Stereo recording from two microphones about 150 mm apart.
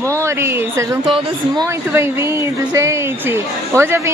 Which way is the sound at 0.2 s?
15° right (ahead or behind).